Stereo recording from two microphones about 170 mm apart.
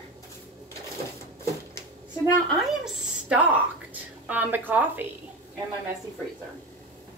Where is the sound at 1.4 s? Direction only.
15° left (ahead or behind).